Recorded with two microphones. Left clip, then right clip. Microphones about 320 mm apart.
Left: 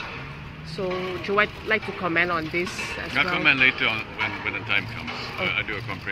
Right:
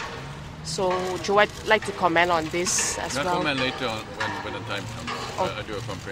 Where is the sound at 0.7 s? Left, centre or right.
Right.